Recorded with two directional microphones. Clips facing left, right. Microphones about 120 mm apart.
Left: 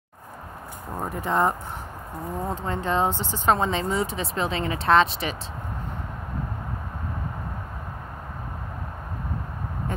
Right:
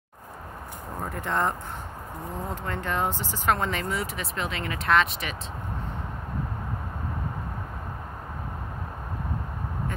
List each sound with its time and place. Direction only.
1.0 s speech: 20° left (ahead or behind)
2.6 s speech: 20° left (ahead or behind)